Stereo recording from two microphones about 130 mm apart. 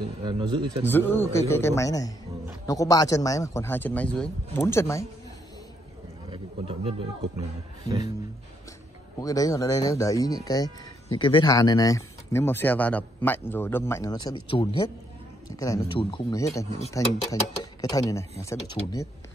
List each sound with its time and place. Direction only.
0.2 s speech: 40° right (ahead or behind)
0.8 s speech: 15° left (ahead or behind)
4.6 s speech: 20° left (ahead or behind)
6.3 s speech: 45° right (ahead or behind)
9.2 s speech: 25° left (ahead or behind)
11.1 s speech: 40° left (ahead or behind); by 14.1 s 20° left (ahead or behind)
14.1 s speech: 40° left (ahead or behind)
15.5 s speech: 25° left (ahead or behind)
16.0 s speech: 40° left (ahead or behind)
16.3 s speech: 25° left (ahead or behind)